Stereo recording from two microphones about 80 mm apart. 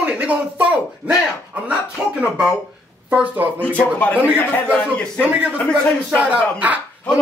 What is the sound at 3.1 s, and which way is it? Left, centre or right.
Speech, centre.